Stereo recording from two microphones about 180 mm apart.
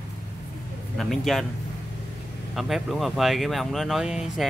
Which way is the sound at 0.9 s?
Centre (ahead or behind).